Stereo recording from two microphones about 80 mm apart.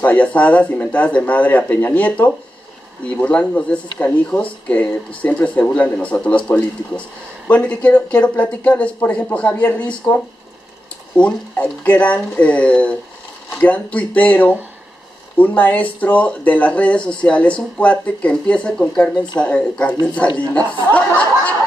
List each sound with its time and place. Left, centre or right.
0.0 s speech: centre